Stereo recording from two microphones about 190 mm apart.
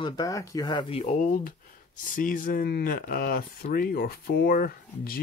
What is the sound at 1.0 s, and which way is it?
Speech, 40° left (ahead or behind).